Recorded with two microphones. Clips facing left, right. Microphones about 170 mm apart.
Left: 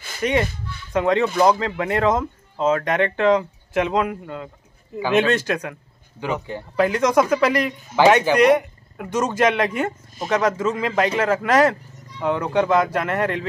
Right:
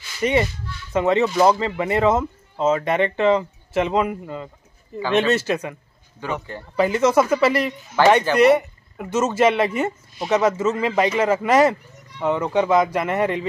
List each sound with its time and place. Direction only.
0.2 s speech: 5° right (ahead or behind)
4.9 s speech: 10° left (ahead or behind)
5.5 s speech: 5° right (ahead or behind)
6.2 s speech: 15° left (ahead or behind)
6.8 s speech: 5° right (ahead or behind)
7.9 s speech: 10° left (ahead or behind)
8.4 s speech: 5° right (ahead or behind)